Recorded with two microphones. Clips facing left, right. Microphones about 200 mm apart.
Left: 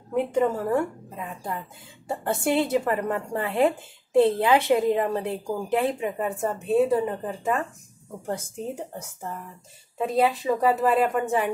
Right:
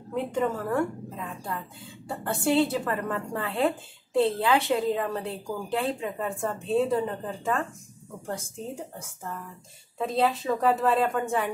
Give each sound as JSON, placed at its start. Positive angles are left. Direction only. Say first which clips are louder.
{"t": 0.1, "sound": "a woman's voice", "louder": "left 4 dB", "side_deg": 20}
{"t": 9.9, "sound": "speech", "louder": "left 3 dB", "side_deg": 10}
{"t": 11.1, "sound": "a woman's voice", "louder": "left 3 dB", "side_deg": 20}